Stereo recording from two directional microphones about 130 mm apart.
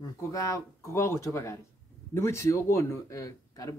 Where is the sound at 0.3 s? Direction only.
25° left (ahead or behind).